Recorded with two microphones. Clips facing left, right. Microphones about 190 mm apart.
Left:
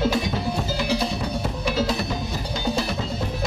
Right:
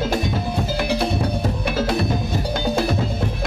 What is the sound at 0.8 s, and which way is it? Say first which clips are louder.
Music: right 4 dB; 55° right (ahead or behind).